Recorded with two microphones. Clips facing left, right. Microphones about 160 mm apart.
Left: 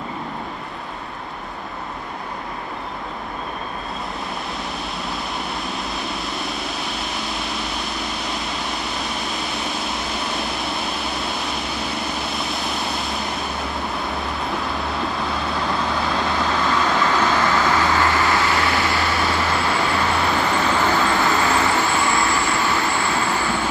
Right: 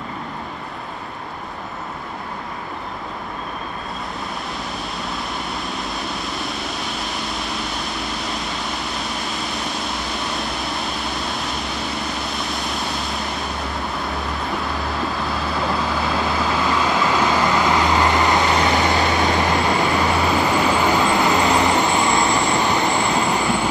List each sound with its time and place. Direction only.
6.3 s vehicle: centre (ahead or behind)
12.4 s vehicle: centre (ahead or behind)
14.0 s vehicle: centre (ahead or behind); by 23.7 s 15° right (ahead or behind)